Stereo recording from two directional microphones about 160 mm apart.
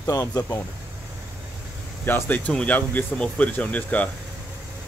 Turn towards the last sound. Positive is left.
turn(degrees=10)  # may be behind; listen again after turning